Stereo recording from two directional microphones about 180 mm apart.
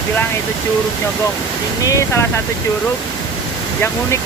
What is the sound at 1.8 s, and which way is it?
Speech, 15° left (ahead or behind).